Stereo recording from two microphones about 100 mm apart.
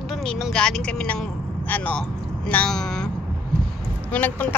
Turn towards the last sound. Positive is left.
turn(degrees=15)  # may be behind; listen again after turning